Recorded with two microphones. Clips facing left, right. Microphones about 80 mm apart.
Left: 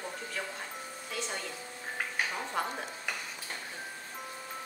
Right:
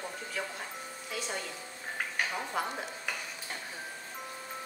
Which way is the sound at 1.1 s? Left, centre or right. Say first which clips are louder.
Even; centre.